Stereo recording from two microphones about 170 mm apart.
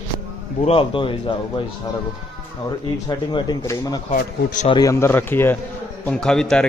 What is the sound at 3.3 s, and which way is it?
A man's voice, 25° left (ahead or behind).